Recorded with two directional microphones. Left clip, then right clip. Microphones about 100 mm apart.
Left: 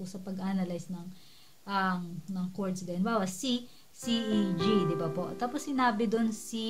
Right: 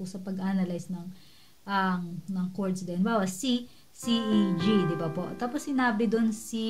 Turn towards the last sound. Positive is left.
turn(degrees=20)  # may be behind; listen again after turning